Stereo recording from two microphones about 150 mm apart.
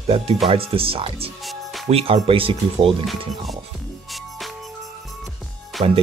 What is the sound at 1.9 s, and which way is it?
Speech, 40° right (ahead or behind).